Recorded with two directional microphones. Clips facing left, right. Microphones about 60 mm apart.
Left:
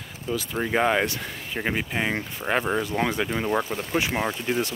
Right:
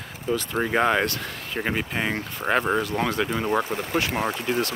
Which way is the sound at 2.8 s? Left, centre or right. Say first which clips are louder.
Right 1 dB; centre.